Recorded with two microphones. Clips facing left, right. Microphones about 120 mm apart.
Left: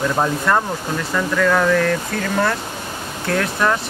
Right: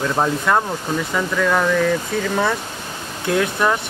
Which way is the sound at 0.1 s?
5° right (ahead or behind).